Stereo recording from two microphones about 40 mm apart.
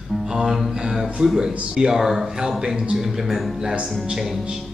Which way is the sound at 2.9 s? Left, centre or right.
Centre.